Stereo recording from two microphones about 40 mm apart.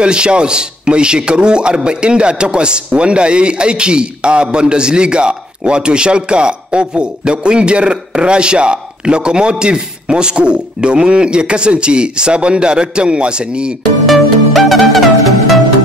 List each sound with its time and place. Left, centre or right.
0.0 s speech: right
14.0 s music: centre